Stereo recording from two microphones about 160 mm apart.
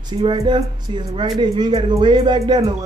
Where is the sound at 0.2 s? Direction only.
30° right (ahead or behind).